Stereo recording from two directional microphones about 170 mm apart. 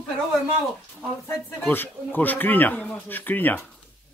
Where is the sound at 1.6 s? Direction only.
10° left (ahead or behind).